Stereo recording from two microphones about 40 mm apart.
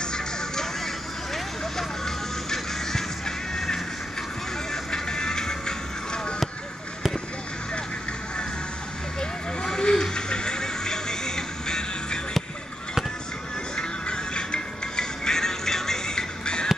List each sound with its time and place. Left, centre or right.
0.0 s music: centre
4.9 s music: centre
9.2 s vehicle: centre
13.7 s music: left